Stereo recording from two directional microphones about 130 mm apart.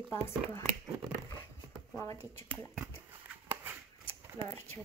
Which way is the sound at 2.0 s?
25° left (ahead or behind).